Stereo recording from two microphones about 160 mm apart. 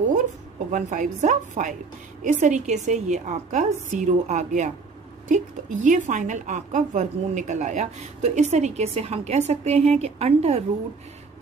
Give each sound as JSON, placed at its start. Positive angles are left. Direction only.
{"t": 0.7, "sound": "a woman's voice", "side_deg": -50}